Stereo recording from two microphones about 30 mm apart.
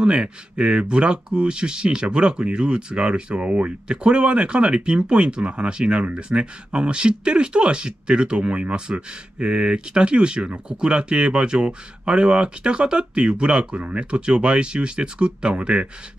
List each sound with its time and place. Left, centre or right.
0.0 s speech: right